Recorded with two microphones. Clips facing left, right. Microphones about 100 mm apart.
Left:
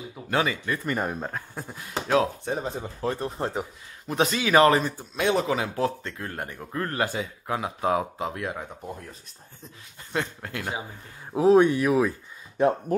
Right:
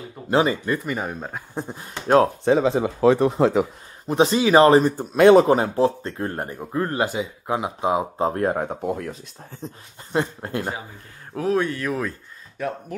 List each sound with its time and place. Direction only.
0.3 s speech: 25° right (ahead or behind)
0.8 s speech: centre (ahead or behind)
1.5 s speech: 25° right (ahead or behind)
2.0 s speech: 45° right (ahead or behind)
2.4 s speech: 85° right
4.1 s speech: 30° right (ahead or behind)
4.9 s speech: 60° right (ahead or behind)
5.8 s speech: 30° right (ahead or behind)
6.6 s speech: 20° right (ahead or behind)
8.2 s speech: 40° right (ahead or behind)
8.5 s speech: 70° right (ahead or behind)
10.1 s speech: 30° right (ahead or behind)
11.3 s speech: 20° left (ahead or behind)
12.6 s speech: 25° left (ahead or behind)